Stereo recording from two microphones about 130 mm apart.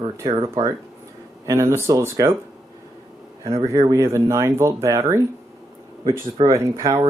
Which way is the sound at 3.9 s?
25° right (ahead or behind).